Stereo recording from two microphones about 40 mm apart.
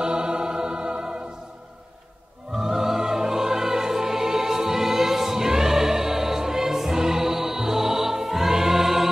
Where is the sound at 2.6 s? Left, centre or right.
Centre.